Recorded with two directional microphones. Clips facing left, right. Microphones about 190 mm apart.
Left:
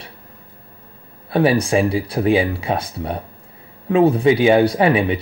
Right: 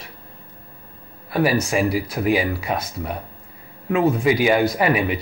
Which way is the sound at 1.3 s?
30° left (ahead or behind).